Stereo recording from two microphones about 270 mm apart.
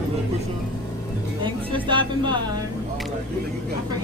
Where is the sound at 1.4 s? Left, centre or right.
Centre.